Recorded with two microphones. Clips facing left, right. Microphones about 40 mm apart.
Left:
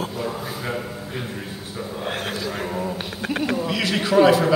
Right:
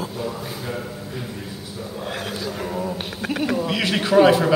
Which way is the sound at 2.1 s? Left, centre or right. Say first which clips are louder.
Left 1 dB; left.